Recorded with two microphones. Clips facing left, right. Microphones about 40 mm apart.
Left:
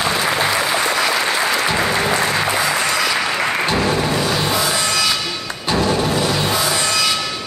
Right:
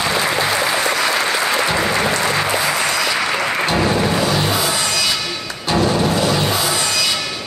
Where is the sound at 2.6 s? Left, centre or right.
Centre.